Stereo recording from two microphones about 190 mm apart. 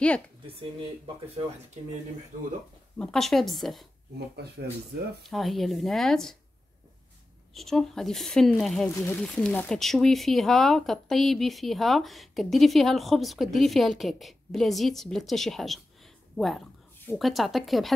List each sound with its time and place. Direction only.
0.6 s speech: 30° right (ahead or behind)
3.0 s speech: 5° left (ahead or behind)
5.2 s speech: centre (ahead or behind)
7.5 s speech: centre (ahead or behind)